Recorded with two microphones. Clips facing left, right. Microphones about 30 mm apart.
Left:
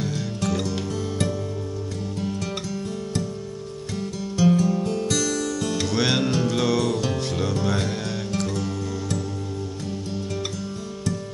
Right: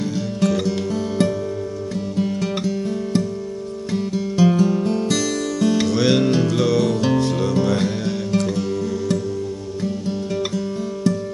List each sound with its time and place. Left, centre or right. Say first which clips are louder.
0.4 s music: right 7 dB; centre
5.9 s music: right 5 dB; centre